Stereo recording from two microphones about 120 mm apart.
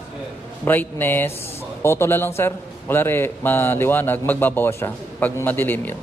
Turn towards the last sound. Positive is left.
turn(degrees=15)  # may be behind; listen again after turning